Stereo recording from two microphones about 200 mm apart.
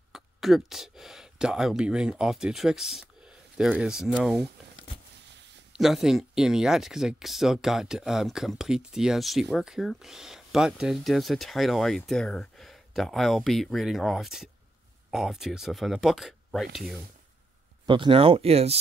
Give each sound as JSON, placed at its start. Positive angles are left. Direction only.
{"t": 0.1, "sound": "speech", "side_deg": 0}
{"t": 5.7, "sound": "speech", "side_deg": 0}
{"t": 17.8, "sound": "speech", "side_deg": -25}